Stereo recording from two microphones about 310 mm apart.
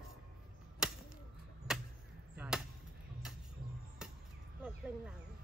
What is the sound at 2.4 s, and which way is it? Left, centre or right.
Chop, centre.